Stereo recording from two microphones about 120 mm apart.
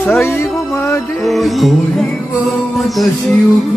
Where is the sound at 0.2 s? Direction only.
20° left (ahead or behind).